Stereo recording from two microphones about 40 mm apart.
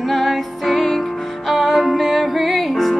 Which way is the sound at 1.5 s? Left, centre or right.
Centre.